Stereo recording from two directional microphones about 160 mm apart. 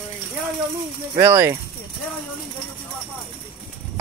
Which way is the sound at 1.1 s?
15° right (ahead or behind).